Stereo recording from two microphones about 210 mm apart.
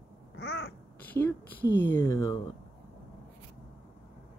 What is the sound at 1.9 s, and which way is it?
Speech, 10° left (ahead or behind).